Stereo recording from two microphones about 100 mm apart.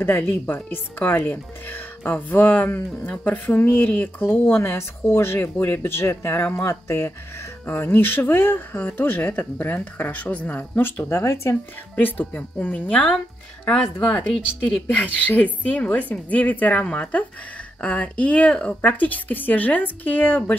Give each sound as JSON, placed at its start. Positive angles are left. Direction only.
{"t": 0.0, "sound": "a woman's voice", "side_deg": 20}